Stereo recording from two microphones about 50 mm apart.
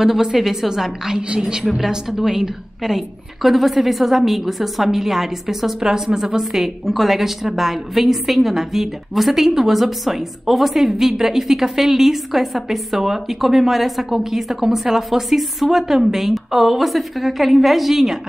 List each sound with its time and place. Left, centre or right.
0.0 s a woman's voice: centre
1.6 s a woman's voice: centre